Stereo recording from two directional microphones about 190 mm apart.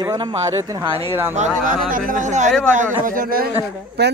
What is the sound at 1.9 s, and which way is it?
Speech, 45° right (ahead or behind).